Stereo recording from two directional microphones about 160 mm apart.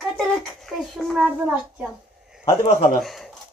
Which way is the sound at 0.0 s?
Centre (ahead or behind).